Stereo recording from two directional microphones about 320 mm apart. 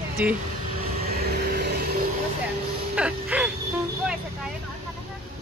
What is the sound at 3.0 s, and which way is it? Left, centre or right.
Music, centre.